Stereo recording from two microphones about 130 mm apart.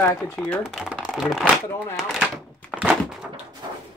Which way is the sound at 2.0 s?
Centre (ahead or behind).